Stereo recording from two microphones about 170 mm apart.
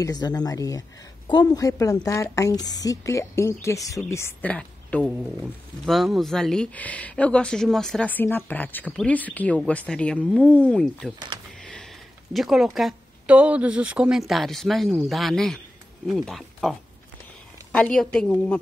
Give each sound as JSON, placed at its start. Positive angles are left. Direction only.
{"t": 0.0, "sound": "a woman's voice", "side_deg": 20}
{"t": 12.3, "sound": "speech", "side_deg": 0}
{"t": 17.7, "sound": "a woman's voice", "side_deg": 5}